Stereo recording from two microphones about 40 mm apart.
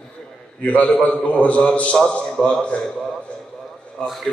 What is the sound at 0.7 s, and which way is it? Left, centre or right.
A man's voice, left.